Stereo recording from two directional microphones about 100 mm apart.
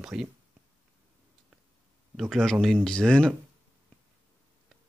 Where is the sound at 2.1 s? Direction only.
5° left (ahead or behind).